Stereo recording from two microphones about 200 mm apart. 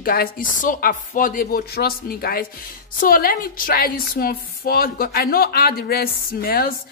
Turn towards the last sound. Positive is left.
turn(degrees=50)  # may be behind; listen again after turning